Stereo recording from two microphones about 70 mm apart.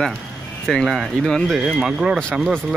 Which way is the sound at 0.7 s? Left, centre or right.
Centre.